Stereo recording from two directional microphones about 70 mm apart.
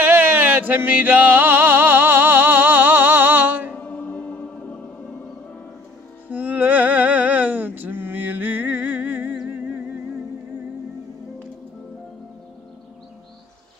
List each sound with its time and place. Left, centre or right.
0.0 s music: right
3.7 s music: centre
6.3 s a sound: right
9.5 s music: right